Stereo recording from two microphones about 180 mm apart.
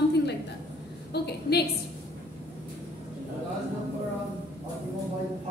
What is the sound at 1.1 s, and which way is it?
Speech, 65° left (ahead or behind).